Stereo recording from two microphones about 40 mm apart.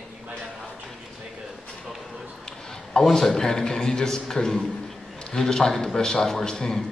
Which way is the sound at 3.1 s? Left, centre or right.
Centre.